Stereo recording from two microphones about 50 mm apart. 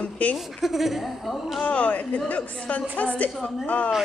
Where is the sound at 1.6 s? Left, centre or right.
Left.